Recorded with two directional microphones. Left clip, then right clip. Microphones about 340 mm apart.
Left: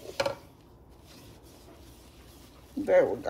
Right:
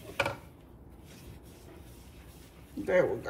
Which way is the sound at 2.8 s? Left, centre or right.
Left.